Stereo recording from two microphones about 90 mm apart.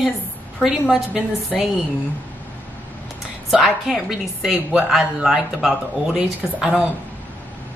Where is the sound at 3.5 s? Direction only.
5° right (ahead or behind).